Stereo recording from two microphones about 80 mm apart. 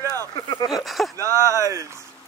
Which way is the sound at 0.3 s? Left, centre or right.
Left.